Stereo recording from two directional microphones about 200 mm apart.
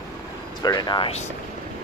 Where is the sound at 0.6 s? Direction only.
20° left (ahead or behind).